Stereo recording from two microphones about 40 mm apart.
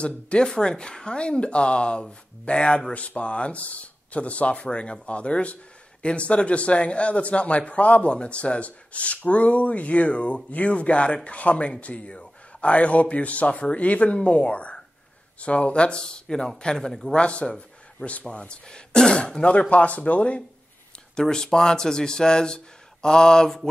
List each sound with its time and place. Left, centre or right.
0.0 s speech: left
17.1 s speech: left
19.7 s speech: left
21.2 s speech: centre